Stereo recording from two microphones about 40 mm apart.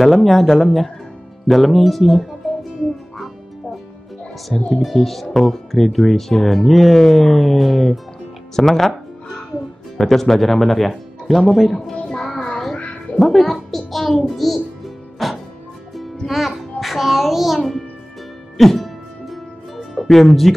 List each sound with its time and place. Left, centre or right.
0.0 s speech: centre
4.5 s speech: centre
12.1 s child singing: centre
12.4 s child singing: centre
12.7 s a sound: left
13.2 s a child's voice: centre
15.2 s music: centre
16.3 s speech: centre
16.8 s music: centre
18.6 s music: centre
20.5 s speech: centre